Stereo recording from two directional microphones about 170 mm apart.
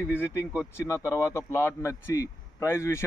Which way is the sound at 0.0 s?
15° left (ahead or behind).